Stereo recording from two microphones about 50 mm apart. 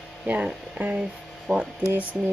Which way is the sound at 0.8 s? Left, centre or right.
Right.